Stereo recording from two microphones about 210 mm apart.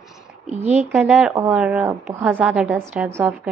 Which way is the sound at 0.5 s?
30° right (ahead or behind).